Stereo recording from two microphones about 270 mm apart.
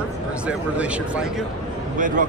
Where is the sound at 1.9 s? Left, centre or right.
Right.